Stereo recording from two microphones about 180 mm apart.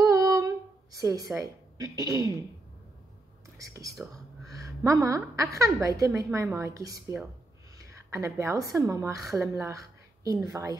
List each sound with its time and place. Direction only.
0.0 s a sound: 20° right (ahead or behind)
0.9 s a woman's voice: 20° right (ahead or behind)
3.5 s a woman's voice: 20° right (ahead or behind)